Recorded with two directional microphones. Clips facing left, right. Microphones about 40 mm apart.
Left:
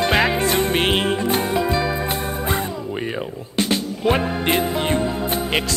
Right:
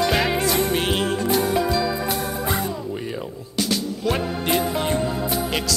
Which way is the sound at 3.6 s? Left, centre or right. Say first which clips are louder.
Left 3 dB; left.